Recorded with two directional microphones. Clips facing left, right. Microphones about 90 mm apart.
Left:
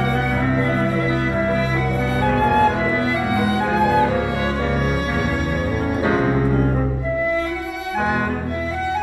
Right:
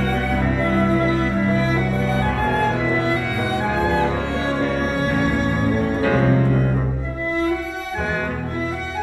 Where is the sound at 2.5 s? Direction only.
30° left (ahead or behind).